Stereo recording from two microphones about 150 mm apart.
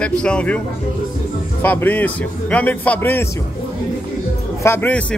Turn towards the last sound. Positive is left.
turn(degrees=15)  # may be behind; listen again after turning